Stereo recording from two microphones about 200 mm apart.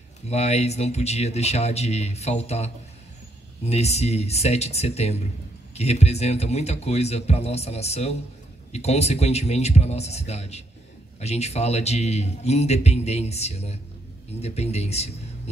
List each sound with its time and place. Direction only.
0.3 s a man's voice: 30° left (ahead or behind)